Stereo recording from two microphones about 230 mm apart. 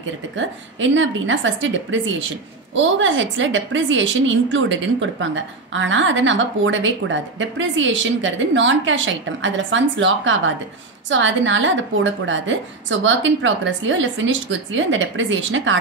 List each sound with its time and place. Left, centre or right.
0.4 s a woman's voice: right